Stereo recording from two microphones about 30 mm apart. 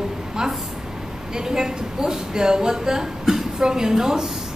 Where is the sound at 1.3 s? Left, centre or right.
Centre.